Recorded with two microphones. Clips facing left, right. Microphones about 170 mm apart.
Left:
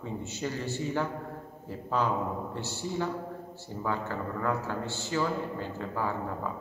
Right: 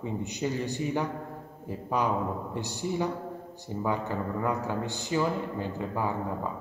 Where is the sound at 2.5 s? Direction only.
15° right (ahead or behind).